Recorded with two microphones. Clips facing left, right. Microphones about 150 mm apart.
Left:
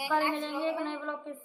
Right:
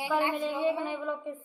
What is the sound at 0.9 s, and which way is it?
Speech, 10° right (ahead or behind).